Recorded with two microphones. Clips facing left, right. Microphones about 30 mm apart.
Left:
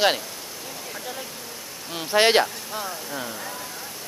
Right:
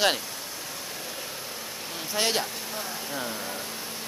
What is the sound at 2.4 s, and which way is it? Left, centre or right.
Speech, left.